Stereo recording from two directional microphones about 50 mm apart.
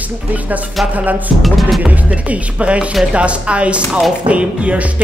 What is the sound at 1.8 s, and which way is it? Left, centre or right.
Speech, right.